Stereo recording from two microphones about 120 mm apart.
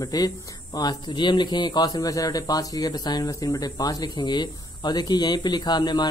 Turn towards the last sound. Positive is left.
turn(degrees=35)  # may be behind; listen again after turning